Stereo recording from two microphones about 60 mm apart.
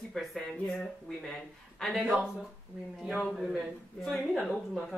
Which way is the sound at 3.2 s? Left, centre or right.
Centre.